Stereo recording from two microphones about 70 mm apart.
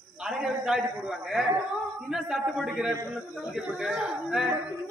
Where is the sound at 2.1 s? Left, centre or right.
Centre.